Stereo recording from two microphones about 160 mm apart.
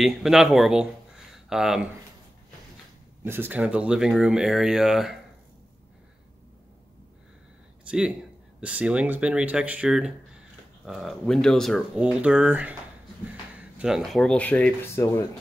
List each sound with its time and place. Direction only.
0.0 s speech: 5° right (ahead or behind)
3.3 s speech: 10° right (ahead or behind)
8.5 s speech: 5° right (ahead or behind); by 15.2 s 15° left (ahead or behind)